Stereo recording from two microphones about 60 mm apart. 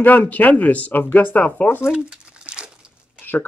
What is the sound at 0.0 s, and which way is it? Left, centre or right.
Speech, left.